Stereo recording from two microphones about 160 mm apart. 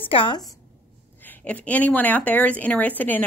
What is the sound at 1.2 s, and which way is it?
A woman's voice, 10° left (ahead or behind).